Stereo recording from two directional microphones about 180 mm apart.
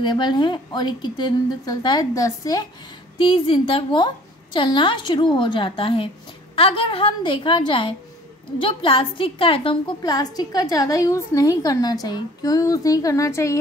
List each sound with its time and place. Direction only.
0.0 s a woman's voice: 25° left (ahead or behind)
3.2 s a woman's voice: 30° left (ahead or behind)